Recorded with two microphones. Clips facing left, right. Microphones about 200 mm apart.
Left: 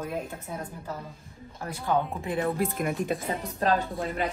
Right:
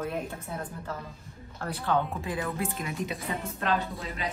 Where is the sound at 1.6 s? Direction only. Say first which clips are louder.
Left 1 dB; 10° left (ahead or behind).